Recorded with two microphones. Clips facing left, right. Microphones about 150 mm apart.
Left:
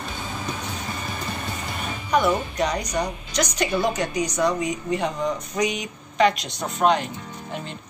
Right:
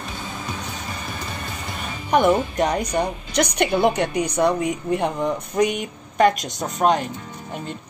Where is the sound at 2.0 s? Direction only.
50° right (ahead or behind).